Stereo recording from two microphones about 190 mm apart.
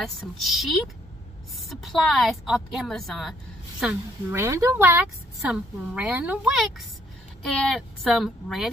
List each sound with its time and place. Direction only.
0.0 s a woman's voice: centre (ahead or behind)
3.8 s a woman's voice: 10° right (ahead or behind)